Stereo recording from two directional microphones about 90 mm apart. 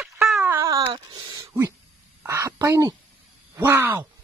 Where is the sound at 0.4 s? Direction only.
25° right (ahead or behind).